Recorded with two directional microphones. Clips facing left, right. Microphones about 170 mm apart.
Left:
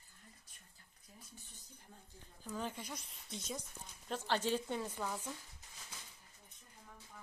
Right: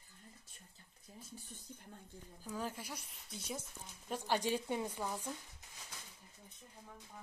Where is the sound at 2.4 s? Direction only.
5° right (ahead or behind).